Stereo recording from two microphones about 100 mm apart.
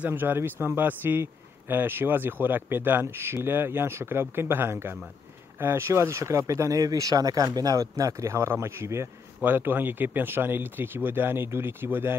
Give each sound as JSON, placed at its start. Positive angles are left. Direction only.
{"t": 0.0, "sound": "speech", "side_deg": -20}